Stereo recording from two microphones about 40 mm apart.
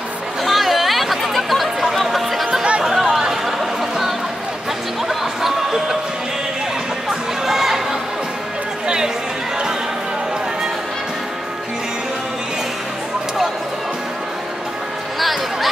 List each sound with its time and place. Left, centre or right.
0.4 s a sound: centre
2.8 s chatter: centre
5.0 s music: centre
7.4 s crowd: centre
8.8 s chatter: centre
15.1 s a sound: centre